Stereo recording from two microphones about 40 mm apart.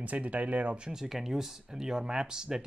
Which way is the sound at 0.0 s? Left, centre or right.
Right.